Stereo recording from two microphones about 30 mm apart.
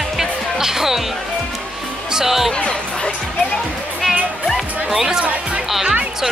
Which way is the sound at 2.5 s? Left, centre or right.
Left.